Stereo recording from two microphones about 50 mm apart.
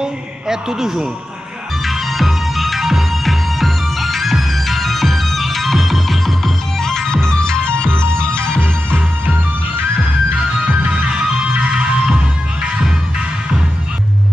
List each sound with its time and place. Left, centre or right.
0.0 s a man's voice: centre
1.9 s music: centre
8.9 s music: right
11.1 s music: right